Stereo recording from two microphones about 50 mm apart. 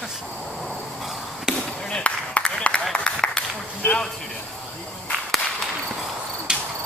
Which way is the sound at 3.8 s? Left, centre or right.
Left.